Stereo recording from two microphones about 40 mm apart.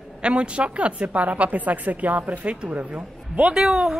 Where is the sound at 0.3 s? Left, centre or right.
Right.